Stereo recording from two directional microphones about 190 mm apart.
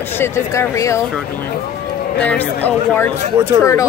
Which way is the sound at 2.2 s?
10° left (ahead or behind).